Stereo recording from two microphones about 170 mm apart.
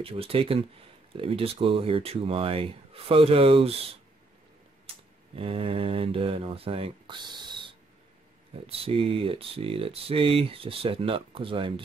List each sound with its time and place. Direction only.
0.0 s speech: 35° right (ahead or behind)
5.3 s speech: 35° right (ahead or behind)